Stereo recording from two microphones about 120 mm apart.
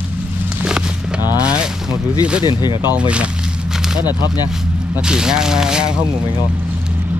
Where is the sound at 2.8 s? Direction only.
10° right (ahead or behind).